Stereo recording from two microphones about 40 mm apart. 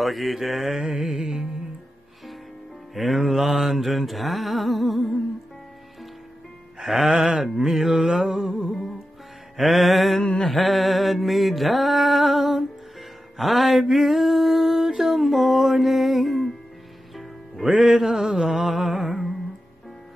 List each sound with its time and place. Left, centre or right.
0.0 s mantra: centre
2.9 s mantra: centre
6.8 s mantra: centre
10.2 s mantra: centre
10.5 s mantra: centre
13.4 s a sound: centre
15.0 s music: centre
17.6 s mantra: centre